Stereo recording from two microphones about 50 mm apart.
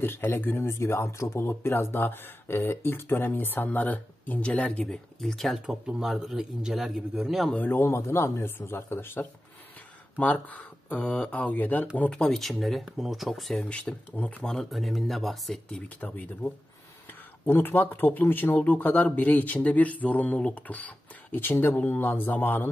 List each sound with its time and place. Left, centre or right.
0.0 s speech: left
0.7 s speech: left
4.4 s speech: left
5.2 s speech: centre
7.7 s speech: left
10.1 s speech: left
11.5 s speech: left
12.1 s speech: centre
14.1 s speech: left
14.4 s speech: centre
14.7 s speech: centre
16.0 s speech: centre
17.5 s speech: left